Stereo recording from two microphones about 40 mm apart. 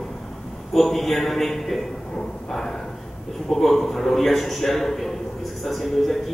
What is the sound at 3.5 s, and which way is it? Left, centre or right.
A man's voice, centre.